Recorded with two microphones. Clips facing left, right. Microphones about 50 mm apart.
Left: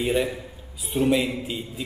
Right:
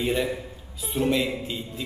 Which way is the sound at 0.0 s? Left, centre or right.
Centre.